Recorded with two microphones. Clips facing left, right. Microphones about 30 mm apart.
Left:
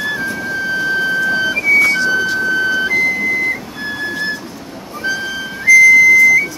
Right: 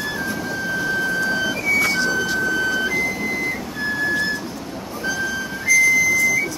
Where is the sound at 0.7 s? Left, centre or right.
Left.